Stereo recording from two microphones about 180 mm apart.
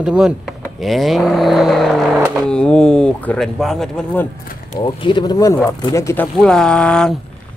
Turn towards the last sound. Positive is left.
turn(degrees=5)  # may be behind; listen again after turning